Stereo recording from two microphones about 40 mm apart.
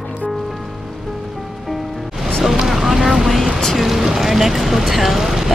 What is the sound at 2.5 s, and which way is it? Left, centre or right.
Vehicle, centre.